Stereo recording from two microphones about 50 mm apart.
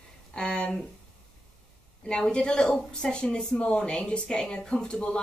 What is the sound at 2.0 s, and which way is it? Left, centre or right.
Speech, centre.